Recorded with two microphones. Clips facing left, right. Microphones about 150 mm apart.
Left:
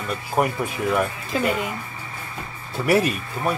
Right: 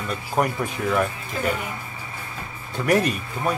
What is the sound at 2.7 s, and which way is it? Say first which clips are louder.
Speech: left 1 dB; 5° left (ahead or behind).